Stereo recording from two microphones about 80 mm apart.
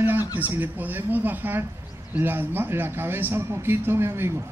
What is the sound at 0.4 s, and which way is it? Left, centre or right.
A man's voice, right.